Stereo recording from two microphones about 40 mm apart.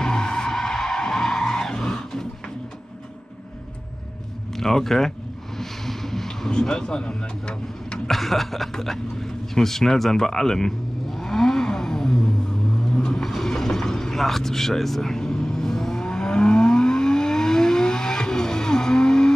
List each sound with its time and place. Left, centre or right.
0.0 s skidding: centre
4.6 s speech: centre
5.6 s vehicle: centre
8.1 s speech: centre
13.2 s vehicle: centre